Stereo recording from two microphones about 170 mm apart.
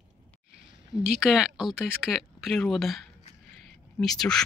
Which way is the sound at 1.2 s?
5° right (ahead or behind).